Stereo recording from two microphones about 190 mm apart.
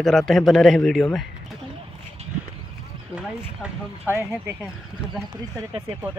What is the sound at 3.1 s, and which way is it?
Speech, 10° right (ahead or behind).